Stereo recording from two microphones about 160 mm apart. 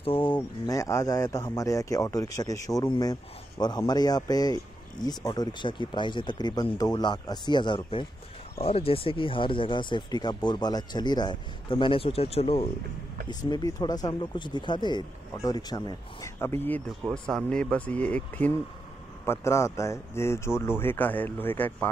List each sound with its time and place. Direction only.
0.0 s a sound: 35° left (ahead or behind)
0.4 s speech: 20° left (ahead or behind); by 12.6 s 35° left (ahead or behind)
13.3 s speech: 25° left (ahead or behind)
16.3 s speech: 15° left (ahead or behind)